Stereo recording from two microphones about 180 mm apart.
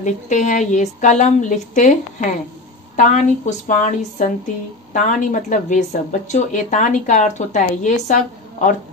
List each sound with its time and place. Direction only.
0.0 s a woman's voice: 45° left (ahead or behind)